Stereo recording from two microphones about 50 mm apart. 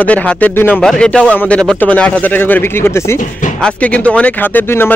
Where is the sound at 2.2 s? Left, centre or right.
Left.